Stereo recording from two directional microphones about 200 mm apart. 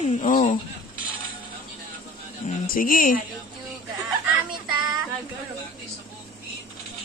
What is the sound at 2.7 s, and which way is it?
Speech, 45° left (ahead or behind).